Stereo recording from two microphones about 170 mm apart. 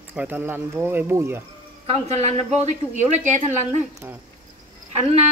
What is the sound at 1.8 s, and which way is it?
Speech, 40° right (ahead or behind).